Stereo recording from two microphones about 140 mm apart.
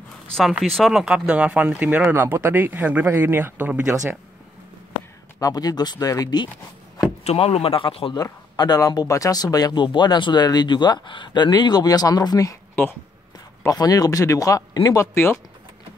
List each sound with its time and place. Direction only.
0.3 s speech: centre (ahead or behind)
5.4 s speech: 25° left (ahead or behind)
7.2 s speech: 45° left (ahead or behind)
8.2 s speech: 30° left (ahead or behind)
13.6 s speech: 25° left (ahead or behind)